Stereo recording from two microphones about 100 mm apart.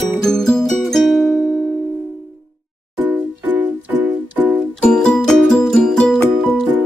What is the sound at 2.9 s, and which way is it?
Music, 20° right (ahead or behind).